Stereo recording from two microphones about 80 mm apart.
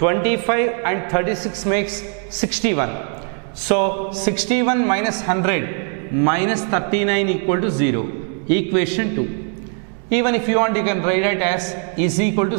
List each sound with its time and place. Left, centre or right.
0.0 s a man's voice: centre